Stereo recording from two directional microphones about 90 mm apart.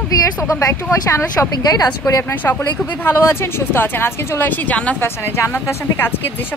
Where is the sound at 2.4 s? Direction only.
20° left (ahead or behind).